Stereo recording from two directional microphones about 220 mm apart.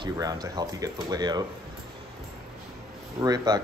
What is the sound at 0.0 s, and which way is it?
Speech, 15° right (ahead or behind).